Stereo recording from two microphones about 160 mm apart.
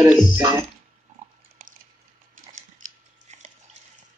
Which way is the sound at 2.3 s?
50° right (ahead or behind).